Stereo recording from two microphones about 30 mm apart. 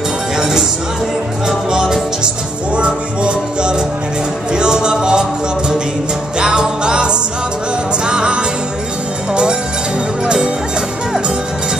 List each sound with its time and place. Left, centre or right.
0.4 s speech: centre
2.7 s music: right
6.4 s music: right